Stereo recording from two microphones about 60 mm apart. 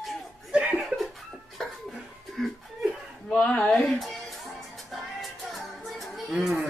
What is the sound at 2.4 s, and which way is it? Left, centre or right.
Chuckle, centre.